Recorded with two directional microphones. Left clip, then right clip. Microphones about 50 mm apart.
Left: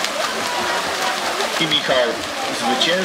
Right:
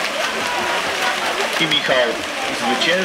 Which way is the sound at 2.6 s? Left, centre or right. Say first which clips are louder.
Even; centre.